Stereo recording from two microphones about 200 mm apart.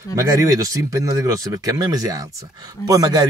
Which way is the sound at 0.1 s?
15° right (ahead or behind).